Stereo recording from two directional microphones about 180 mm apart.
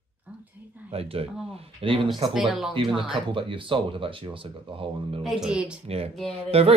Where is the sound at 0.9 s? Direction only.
35° right (ahead or behind).